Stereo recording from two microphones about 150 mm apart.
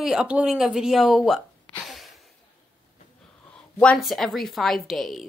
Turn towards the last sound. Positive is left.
turn(degrees=0)  # may be behind; listen again after turning